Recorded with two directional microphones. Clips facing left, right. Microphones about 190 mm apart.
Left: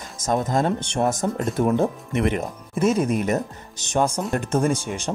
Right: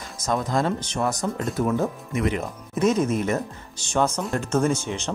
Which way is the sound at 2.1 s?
55° left (ahead or behind).